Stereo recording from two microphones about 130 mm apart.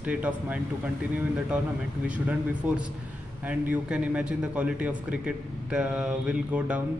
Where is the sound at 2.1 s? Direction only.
10° right (ahead or behind).